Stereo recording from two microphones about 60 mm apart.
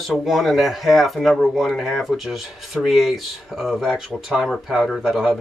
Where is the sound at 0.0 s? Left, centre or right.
Centre.